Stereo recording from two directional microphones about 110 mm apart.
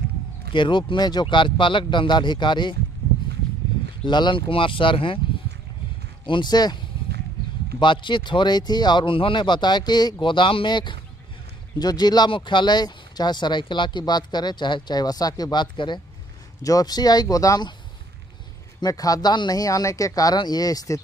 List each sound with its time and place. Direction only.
0.5 s speech: 45° left (ahead or behind)
4.0 s speech: 45° left (ahead or behind)
6.2 s speech: 45° left (ahead or behind)
7.8 s speech: 45° left (ahead or behind)
18.8 s speech: 35° left (ahead or behind)